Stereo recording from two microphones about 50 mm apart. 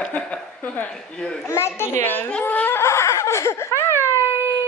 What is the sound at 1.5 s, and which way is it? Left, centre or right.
Speech, left.